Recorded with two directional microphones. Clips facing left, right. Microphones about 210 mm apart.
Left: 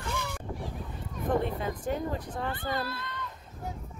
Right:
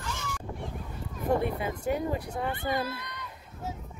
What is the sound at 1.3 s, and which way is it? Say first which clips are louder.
A child's voice: right 1 dB; 10° right (ahead or behind).